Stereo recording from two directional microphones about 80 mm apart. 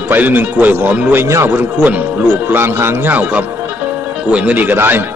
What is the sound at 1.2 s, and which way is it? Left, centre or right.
Speech, right.